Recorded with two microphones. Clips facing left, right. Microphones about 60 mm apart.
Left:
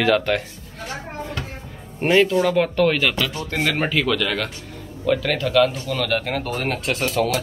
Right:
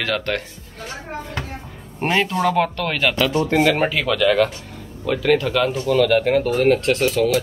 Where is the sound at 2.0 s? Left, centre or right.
Centre.